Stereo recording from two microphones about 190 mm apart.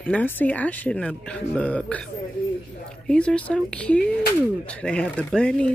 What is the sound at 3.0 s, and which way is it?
Speech, 5° left (ahead or behind).